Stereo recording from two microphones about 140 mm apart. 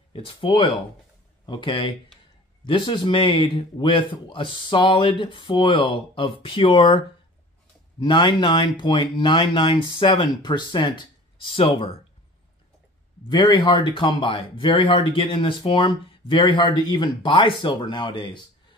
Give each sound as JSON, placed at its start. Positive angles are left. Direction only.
{"t": 0.1, "sound": "speech", "side_deg": 40}
{"t": 8.0, "sound": "speech", "side_deg": 35}
{"t": 13.3, "sound": "speech", "side_deg": 30}